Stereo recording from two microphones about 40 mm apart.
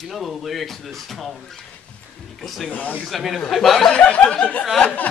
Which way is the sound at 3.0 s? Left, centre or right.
Centre.